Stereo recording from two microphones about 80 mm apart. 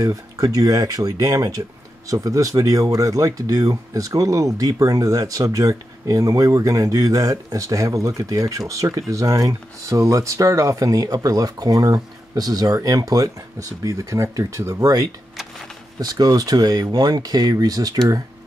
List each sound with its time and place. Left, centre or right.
0.0 s speech: right